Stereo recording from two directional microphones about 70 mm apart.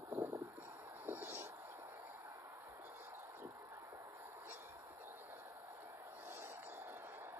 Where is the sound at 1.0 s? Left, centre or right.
Right.